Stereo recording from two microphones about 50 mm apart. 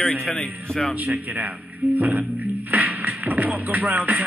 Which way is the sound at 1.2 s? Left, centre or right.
Right.